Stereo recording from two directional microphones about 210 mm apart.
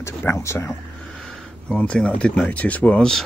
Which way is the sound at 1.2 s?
Centre (ahead or behind).